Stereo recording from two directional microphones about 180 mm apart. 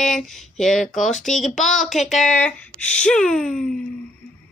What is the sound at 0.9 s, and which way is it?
Speech, 45° left (ahead or behind).